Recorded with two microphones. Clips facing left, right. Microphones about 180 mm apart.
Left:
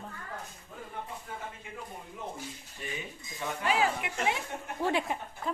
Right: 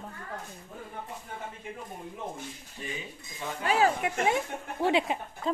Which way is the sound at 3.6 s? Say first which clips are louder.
Right 4 dB; 45° right (ahead or behind).